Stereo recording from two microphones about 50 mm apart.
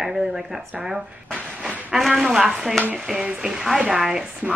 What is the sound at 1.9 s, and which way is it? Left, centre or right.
Speech, centre.